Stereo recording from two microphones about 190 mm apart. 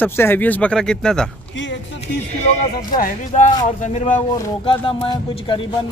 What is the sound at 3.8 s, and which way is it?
Speech, 40° left (ahead or behind).